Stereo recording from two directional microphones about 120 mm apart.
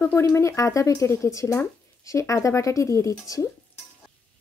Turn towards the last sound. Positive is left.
turn(degrees=25)  # may be behind; listen again after turning